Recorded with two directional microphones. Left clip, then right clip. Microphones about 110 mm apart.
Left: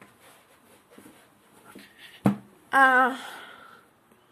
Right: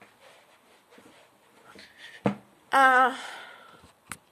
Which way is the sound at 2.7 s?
35° right (ahead or behind).